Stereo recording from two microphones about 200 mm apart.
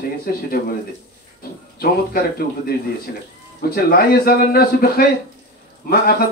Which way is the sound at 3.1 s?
45° left (ahead or behind).